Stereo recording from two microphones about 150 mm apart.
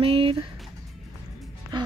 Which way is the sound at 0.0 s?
35° right (ahead or behind).